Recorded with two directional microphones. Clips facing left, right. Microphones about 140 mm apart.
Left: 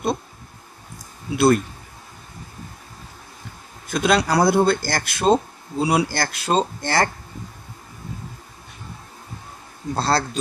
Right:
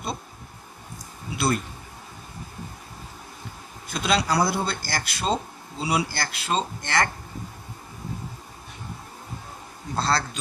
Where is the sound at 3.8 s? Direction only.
50° left (ahead or behind).